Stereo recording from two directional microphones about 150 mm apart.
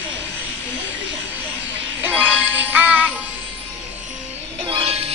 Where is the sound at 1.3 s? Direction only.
10° right (ahead or behind).